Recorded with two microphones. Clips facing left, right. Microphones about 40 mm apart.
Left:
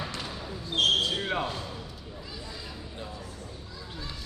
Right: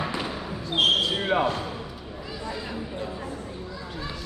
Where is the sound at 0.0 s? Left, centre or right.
Right.